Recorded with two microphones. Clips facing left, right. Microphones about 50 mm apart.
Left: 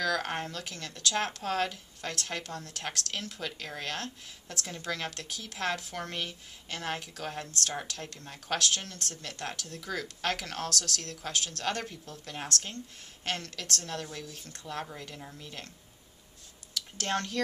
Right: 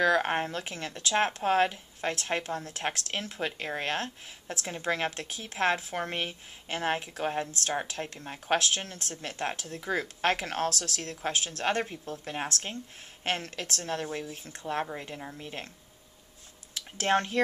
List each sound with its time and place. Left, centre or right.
0.0 s speech: right
14.4 s speech: centre
14.7 s speech: right
16.7 s speech: right